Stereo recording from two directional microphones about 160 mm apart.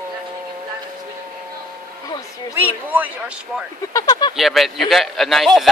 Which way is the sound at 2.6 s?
10° right (ahead or behind).